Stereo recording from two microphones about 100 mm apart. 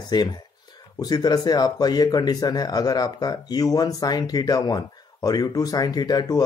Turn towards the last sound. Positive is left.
turn(degrees=40)  # may be behind; listen again after turning